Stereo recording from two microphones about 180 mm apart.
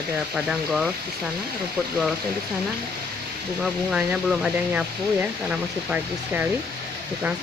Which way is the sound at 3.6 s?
5° right (ahead or behind).